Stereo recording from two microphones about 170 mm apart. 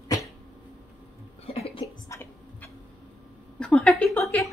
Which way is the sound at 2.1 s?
15° left (ahead or behind).